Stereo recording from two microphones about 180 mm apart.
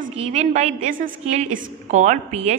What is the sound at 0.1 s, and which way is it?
A woman's voice, 35° right (ahead or behind).